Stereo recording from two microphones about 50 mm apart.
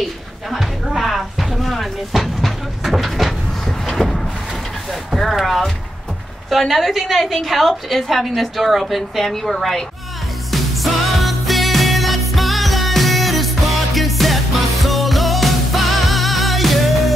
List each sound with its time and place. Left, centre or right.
0.0 s a sound: centre
5.1 s a woman's voice: centre
10.5 s music: centre